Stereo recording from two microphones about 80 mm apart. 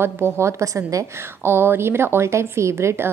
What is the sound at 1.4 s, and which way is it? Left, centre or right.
Speech, right.